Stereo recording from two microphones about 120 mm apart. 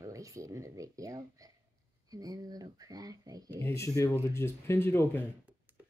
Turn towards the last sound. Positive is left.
turn(degrees=20)  # may be behind; listen again after turning